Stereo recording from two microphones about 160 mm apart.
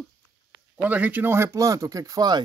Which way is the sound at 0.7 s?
10° right (ahead or behind).